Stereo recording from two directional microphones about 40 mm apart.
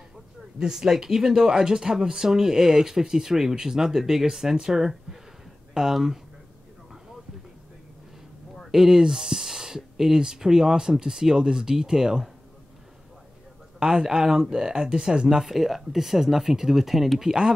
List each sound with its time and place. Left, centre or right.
0.6 s speech: centre
8.7 s speech: centre
13.7 s speech: right
15.2 s speech: centre